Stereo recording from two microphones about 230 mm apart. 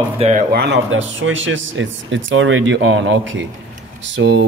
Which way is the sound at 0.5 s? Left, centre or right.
Right.